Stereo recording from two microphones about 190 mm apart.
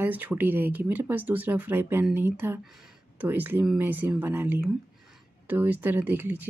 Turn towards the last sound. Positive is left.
turn(degrees=-10)  # may be behind; listen again after turning